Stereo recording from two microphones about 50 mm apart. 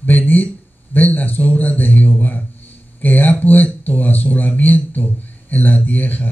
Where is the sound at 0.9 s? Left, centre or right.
Left.